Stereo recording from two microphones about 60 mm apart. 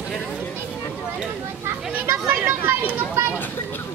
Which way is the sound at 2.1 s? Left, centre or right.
Right.